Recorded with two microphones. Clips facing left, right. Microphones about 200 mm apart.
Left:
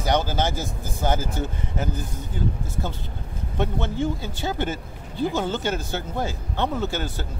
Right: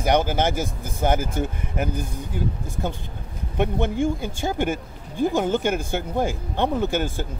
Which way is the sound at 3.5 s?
15° right (ahead or behind).